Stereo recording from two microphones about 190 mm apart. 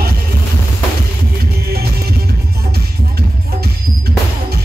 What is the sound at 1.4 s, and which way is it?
Music, 55° right (ahead or behind).